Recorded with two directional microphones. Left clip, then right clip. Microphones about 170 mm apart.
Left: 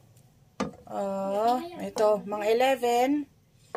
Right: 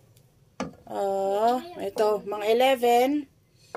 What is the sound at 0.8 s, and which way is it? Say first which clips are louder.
Speech: right 5 dB; 50° right (ahead or behind).